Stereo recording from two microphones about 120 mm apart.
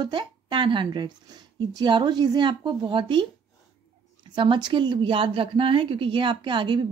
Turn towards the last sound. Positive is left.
turn(degrees=-40)  # may be behind; listen again after turning